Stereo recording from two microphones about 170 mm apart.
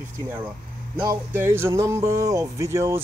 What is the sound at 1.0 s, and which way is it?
Speech, 15° right (ahead or behind).